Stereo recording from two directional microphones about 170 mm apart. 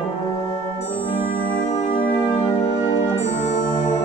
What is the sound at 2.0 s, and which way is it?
Music, 10° left (ahead or behind).